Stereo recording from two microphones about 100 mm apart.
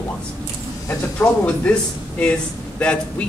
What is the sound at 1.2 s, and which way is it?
Speech, 15° left (ahead or behind).